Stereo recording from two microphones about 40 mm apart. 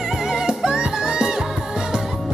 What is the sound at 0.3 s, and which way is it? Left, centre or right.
Music, centre.